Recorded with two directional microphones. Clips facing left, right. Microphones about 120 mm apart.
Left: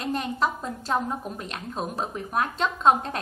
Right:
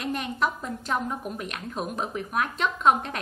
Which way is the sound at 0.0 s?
30° left (ahead or behind).